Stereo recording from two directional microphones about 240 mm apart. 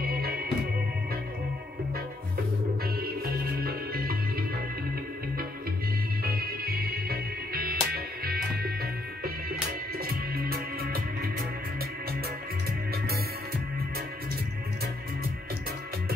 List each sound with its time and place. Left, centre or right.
0.0 s music: right
3.0 s music: right
6.2 s music: right